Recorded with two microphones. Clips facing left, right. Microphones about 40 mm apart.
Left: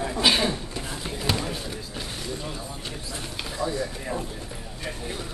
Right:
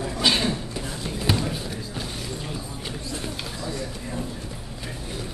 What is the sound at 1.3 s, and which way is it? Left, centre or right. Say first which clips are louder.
Basketball bounce: right 2 dB; centre.